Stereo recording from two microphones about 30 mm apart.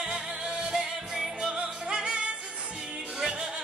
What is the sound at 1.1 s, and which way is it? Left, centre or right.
Music, centre.